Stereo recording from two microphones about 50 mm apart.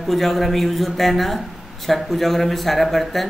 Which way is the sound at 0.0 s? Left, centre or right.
Centre.